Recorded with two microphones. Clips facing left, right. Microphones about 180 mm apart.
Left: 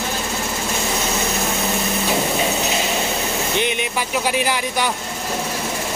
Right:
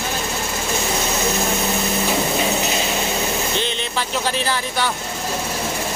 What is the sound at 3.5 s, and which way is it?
Vehicle, 15° left (ahead or behind).